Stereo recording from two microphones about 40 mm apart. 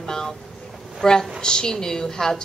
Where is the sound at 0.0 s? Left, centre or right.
Centre.